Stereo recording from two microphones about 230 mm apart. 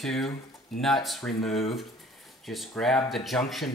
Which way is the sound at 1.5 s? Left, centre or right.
Left.